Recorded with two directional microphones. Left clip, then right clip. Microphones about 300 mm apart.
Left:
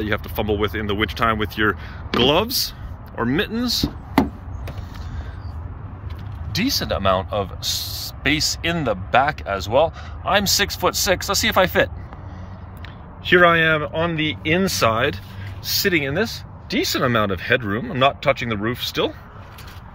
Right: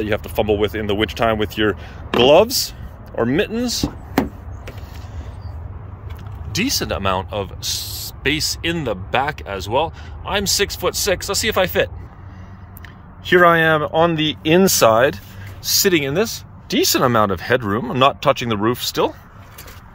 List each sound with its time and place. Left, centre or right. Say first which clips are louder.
0.0 s speech: right 4 dB; centre
6.5 s speech: right 1 dB; centre
13.2 s speech: right 2 dB; centre